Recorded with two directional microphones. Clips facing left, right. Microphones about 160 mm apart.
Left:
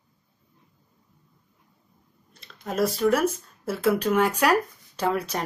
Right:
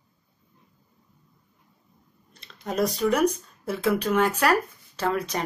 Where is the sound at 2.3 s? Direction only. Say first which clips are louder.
Right 1 dB; centre (ahead or behind).